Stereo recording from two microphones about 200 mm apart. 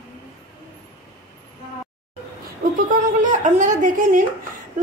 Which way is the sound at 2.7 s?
40° right (ahead or behind).